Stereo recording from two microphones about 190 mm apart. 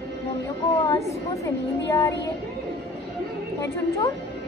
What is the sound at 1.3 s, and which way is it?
Speech, 15° left (ahead or behind).